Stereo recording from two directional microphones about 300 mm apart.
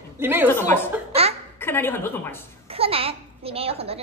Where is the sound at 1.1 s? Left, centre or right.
Centre.